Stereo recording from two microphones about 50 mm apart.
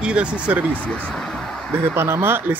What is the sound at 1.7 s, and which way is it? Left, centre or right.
Speech, right.